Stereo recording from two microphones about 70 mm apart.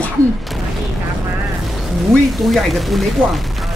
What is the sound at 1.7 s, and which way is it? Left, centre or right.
Speech, centre.